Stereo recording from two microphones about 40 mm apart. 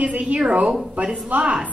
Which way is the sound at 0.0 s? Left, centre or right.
Right.